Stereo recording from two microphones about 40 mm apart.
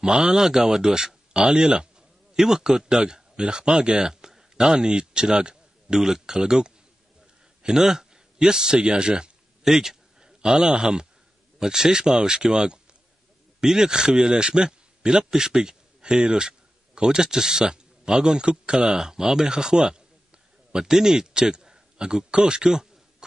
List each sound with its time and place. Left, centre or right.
0.0 s speech: centre
8.8 s a sound: right
9.7 s a man's voice: centre